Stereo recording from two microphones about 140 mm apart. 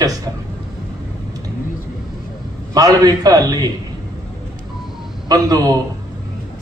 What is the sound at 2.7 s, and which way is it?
Speech, 25° right (ahead or behind).